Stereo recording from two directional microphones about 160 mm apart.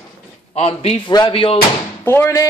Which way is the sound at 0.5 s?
40° left (ahead or behind).